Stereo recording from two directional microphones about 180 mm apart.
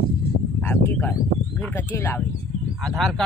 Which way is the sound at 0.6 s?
10° left (ahead or behind).